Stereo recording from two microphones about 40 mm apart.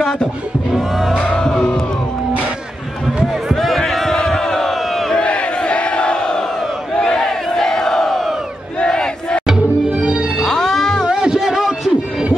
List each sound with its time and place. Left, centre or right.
0.7 s music: centre
1.3 s music: centre
3.5 s a sound: centre
4.2 s crowd: centre
5.2 s crowd: left
7.0 s battle cry: centre
8.8 s crowd: centre
9.8 s music: right
10.5 s music: centre
11.1 s music: centre
11.4 s music: centre